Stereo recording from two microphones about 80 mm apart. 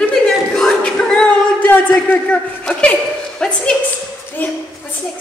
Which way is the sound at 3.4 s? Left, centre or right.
Centre.